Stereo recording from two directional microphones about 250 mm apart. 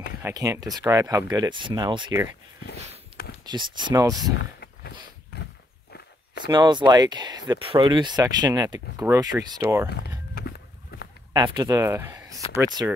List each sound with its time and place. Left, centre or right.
0.2 s speech: centre
3.4 s speech: centre
4.6 s a sound: left
6.4 s speech: centre
9.8 s walk: left
11.3 s speech: centre